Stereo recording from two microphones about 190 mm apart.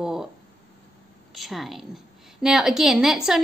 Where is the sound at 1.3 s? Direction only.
Centre (ahead or behind).